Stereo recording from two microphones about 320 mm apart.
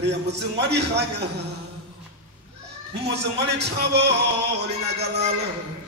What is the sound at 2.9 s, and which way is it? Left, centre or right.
A man's voice, right.